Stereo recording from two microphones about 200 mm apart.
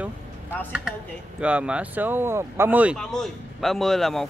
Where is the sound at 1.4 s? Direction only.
5° right (ahead or behind).